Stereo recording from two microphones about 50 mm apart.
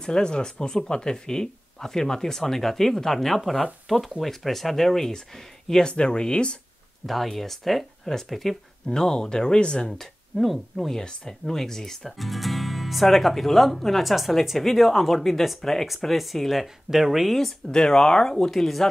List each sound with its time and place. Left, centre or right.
0.0 s speech: centre
5.7 s speech: centre
7.1 s speech: centre
17.6 s speech: centre